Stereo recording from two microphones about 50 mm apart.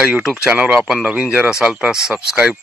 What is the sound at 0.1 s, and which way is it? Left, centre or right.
Speech, centre.